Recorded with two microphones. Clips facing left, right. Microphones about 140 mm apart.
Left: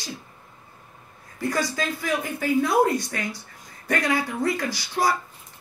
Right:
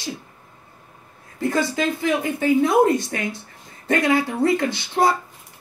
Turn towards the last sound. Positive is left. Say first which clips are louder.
# right 4 dB
turn(degrees=-25)  # may be behind; listen again after turning